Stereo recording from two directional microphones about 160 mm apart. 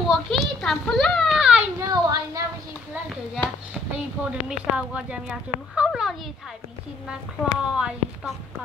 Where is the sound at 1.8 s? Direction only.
25° right (ahead or behind).